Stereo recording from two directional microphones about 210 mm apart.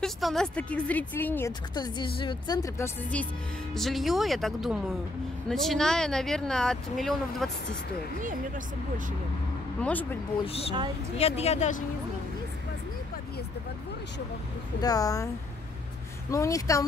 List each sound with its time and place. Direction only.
0.0 s a woman's voice: centre (ahead or behind)
8.2 s speech: 40° right (ahead or behind)
9.8 s speech: 5° left (ahead or behind)
11.1 s a woman's voice: 30° left (ahead or behind)
14.8 s a woman's voice: 15° left (ahead or behind)
16.3 s a woman's voice: 15° left (ahead or behind)